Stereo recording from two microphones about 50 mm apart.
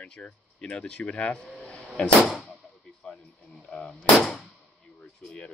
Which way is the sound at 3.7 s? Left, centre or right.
Centre.